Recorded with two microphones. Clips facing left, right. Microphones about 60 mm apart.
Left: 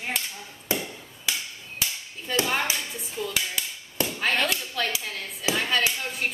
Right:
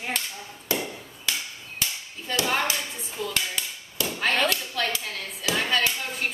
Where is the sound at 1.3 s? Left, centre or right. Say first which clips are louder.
Even; centre.